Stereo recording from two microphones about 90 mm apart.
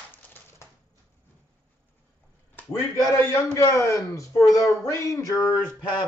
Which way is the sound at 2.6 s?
20° left (ahead or behind).